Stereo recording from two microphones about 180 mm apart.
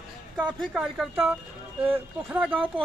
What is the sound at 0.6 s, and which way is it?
Speech, 5° right (ahead or behind).